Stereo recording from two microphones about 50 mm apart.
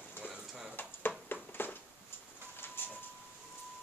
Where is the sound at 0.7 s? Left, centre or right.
Left.